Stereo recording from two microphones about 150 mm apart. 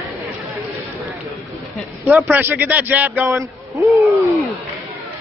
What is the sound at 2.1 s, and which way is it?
A man's voice, 10° right (ahead or behind).